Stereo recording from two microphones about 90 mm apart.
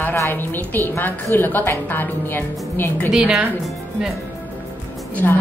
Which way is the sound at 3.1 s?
10° right (ahead or behind).